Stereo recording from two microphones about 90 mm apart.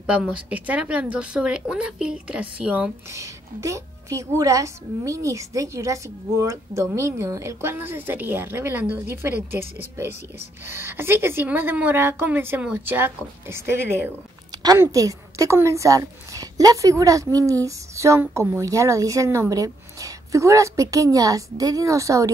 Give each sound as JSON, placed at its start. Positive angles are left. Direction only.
{"t": 0.3, "sound": "speech", "side_deg": -15}
{"t": 3.1, "sound": "a woman's voice", "side_deg": -35}
{"t": 7.7, "sound": "a woman's voice", "side_deg": -25}
{"t": 14.8, "sound": "a woman's voice", "side_deg": -40}